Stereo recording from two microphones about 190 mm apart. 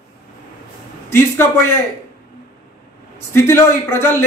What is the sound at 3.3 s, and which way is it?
Speech, 10° left (ahead or behind).